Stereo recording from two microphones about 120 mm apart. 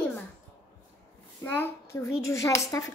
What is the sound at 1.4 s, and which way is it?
A child's voice, 15° left (ahead or behind).